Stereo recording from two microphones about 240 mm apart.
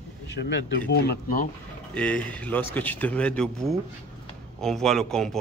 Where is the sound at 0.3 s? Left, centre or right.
Left.